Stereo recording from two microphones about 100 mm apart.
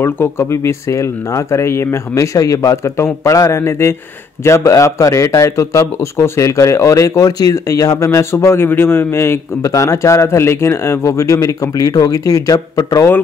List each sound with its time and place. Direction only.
0.0 s a man's voice: 25° left (ahead or behind)